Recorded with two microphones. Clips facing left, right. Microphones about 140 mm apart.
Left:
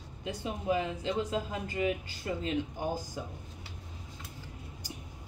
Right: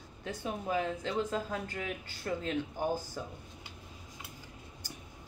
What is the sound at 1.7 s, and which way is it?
Speech, 20° left (ahead or behind).